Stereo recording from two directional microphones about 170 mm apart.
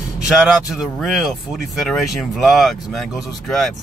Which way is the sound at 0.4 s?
5° right (ahead or behind).